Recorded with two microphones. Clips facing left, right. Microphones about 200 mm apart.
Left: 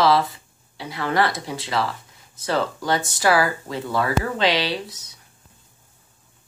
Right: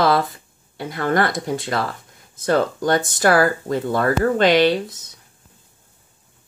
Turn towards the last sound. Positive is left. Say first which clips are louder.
# right 9 dB
turn(degrees=-50)  # may be behind; listen again after turning